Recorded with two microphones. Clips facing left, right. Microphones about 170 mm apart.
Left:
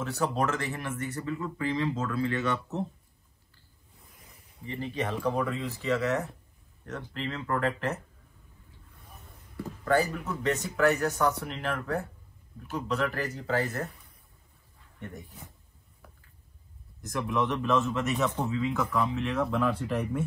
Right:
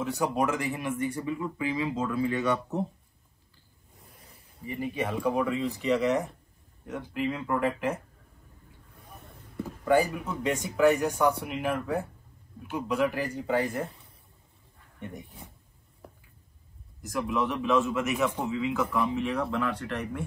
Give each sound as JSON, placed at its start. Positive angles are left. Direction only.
{"t": 0.0, "sound": "speech", "side_deg": -15}
{"t": 4.6, "sound": "speech", "side_deg": -10}
{"t": 9.8, "sound": "speech", "side_deg": -15}
{"t": 15.0, "sound": "speech", "side_deg": -15}
{"t": 17.1, "sound": "speech", "side_deg": 0}